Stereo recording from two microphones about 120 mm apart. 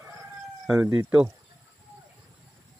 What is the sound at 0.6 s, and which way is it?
Chicken, 5° right (ahead or behind).